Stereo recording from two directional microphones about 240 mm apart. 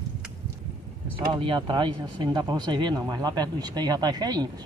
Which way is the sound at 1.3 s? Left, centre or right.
Right.